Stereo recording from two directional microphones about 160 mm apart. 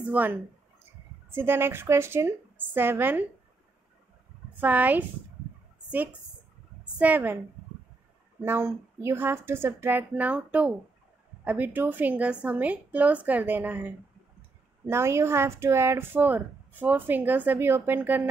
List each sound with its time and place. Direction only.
0.0 s speech: 10° right (ahead or behind)
4.6 s speech: 10° right (ahead or behind)
7.0 s speech: 10° right (ahead or behind)
8.5 s speech: 15° right (ahead or behind)